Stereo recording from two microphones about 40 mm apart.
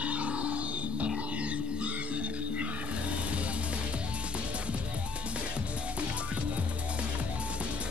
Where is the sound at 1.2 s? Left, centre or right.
Right.